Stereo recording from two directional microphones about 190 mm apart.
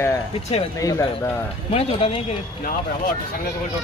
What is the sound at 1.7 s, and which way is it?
Speech, 30° left (ahead or behind).